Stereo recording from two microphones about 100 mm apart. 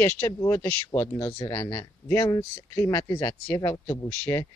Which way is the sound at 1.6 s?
50° left (ahead or behind).